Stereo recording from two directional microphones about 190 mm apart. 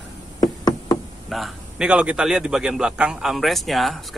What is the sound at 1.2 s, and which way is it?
A man's voice, centre (ahead or behind).